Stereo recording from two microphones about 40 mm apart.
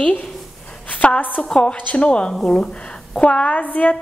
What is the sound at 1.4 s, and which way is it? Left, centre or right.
Speech, left.